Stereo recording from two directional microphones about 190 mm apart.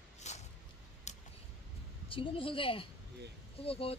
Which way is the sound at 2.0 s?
25° left (ahead or behind).